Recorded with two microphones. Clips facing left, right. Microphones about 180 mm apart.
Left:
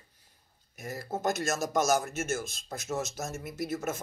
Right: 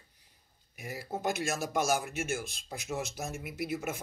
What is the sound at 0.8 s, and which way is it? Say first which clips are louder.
Speech: left 2 dB; 10° right (ahead or behind).